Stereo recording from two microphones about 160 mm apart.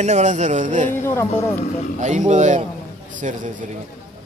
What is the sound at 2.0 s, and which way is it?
Speech, 50° right (ahead or behind).